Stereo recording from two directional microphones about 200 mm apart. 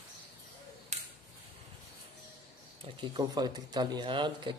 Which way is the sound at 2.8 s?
25° right (ahead or behind).